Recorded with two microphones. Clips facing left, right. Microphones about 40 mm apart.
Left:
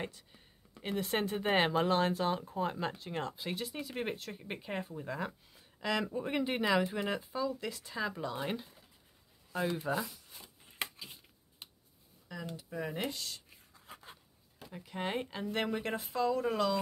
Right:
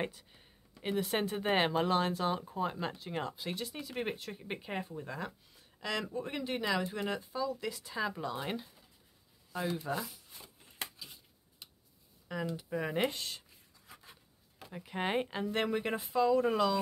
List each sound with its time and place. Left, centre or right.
0.0 s speech: centre
0.8 s speech: centre
9.5 s speech: centre
9.8 s speech: centre
11.6 s a sound: left
12.5 s speech: right
13.7 s a sound: left
14.6 s speech: centre